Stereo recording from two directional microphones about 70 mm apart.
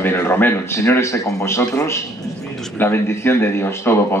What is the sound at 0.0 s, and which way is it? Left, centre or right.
Speech, left.